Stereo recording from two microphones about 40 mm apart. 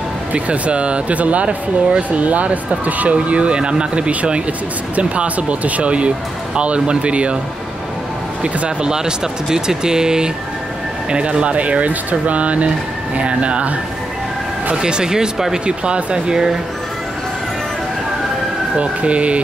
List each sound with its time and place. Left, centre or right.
0.3 s speech: right
4.1 s speech: right
8.4 s speech: right
14.8 s speech: centre
15.6 s speech: right
18.8 s speech: right